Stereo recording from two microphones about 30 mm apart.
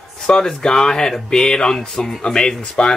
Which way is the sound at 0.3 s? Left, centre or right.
Left.